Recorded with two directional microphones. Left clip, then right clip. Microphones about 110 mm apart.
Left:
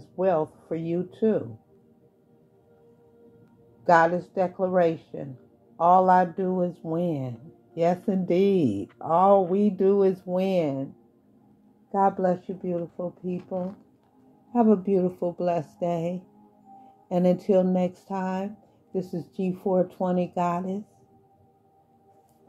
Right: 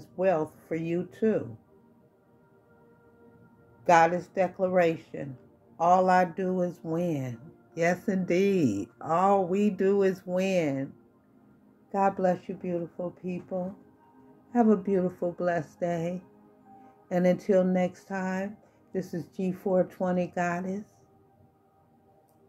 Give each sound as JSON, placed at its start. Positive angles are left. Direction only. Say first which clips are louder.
{"t": 0.0, "sound": "speech", "louder": "left 2 dB", "side_deg": 40}
{"t": 3.8, "sound": "speech", "louder": "left 2 dB", "side_deg": 50}
{"t": 11.9, "sound": "speech", "louder": "left 3 dB", "side_deg": 50}